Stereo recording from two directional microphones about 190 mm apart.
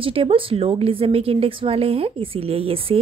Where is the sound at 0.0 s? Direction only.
30° right (ahead or behind).